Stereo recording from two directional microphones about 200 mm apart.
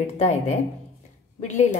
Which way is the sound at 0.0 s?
35° left (ahead or behind).